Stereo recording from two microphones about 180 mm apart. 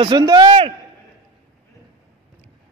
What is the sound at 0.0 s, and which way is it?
Speech, 25° right (ahead or behind).